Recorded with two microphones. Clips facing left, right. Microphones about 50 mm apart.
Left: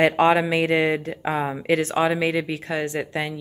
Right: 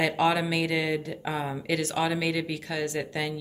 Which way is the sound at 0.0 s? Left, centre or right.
Left.